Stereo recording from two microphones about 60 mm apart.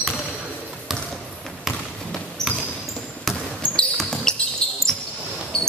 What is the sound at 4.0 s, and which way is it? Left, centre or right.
Basketball bounce, centre.